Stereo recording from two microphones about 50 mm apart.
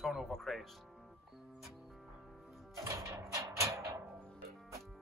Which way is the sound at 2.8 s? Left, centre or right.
Right.